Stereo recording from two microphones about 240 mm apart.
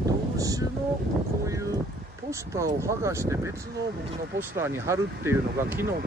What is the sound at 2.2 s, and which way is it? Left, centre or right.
Speech, centre.